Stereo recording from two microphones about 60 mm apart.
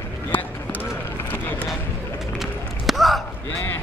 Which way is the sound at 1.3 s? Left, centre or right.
Left.